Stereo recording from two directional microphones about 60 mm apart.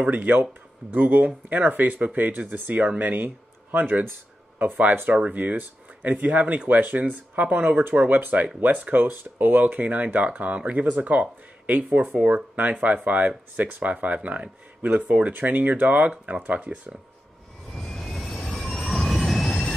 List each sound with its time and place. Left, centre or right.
0.0 s speech: right
17.7 s vehicle: centre